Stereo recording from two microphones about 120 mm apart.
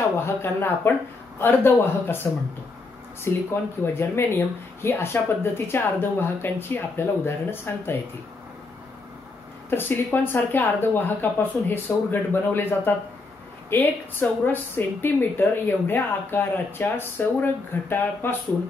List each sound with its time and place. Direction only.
0.2 s speech: 20° left (ahead or behind)
3.3 s speech: 20° left (ahead or behind)
9.7 s speech: 20° left (ahead or behind)